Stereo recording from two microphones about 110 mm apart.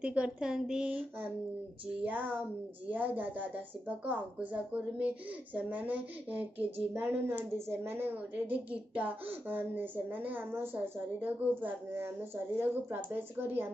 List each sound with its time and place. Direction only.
0.0 s a woman's voice: 10° right (ahead or behind)
2.9 s a woman's voice: 15° right (ahead or behind)